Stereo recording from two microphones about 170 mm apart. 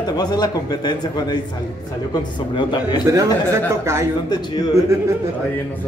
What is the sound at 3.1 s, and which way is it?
Speech, 15° right (ahead or behind).